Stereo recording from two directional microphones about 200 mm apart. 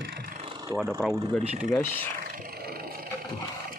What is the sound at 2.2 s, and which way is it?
Roaring cats, 50° right (ahead or behind).